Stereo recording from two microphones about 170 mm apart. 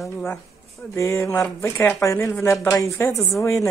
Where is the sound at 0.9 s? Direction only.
15° left (ahead or behind).